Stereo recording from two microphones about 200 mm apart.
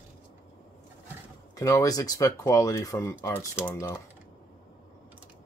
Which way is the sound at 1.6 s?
15° left (ahead or behind).